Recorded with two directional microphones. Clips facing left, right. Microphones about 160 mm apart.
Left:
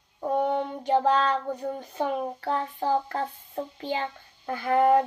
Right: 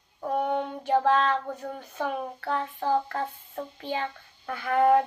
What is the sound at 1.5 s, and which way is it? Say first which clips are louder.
Speech: left 4 dB; 15° left (ahead or behind).